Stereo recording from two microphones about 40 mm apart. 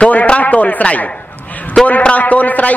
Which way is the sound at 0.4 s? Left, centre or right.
Left.